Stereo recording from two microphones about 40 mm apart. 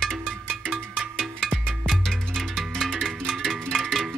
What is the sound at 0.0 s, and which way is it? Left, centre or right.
Music, centre.